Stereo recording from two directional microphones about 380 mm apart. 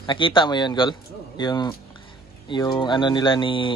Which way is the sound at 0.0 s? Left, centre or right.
Centre.